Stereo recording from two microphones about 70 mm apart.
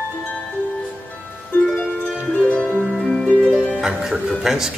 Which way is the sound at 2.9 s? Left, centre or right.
Centre.